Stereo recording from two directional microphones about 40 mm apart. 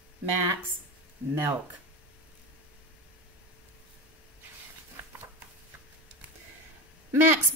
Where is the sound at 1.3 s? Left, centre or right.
Right.